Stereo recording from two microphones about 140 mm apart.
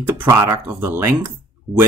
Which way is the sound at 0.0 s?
15° right (ahead or behind).